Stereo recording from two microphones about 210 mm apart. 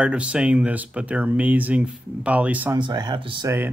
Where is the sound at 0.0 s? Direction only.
5° right (ahead or behind).